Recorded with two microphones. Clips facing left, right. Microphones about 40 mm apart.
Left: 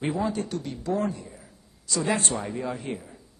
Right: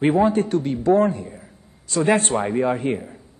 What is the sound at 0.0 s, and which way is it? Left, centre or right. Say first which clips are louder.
A man's voice: right 10 dB; right.